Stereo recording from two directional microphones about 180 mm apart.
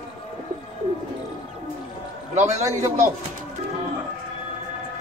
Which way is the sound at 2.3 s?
40° right (ahead or behind).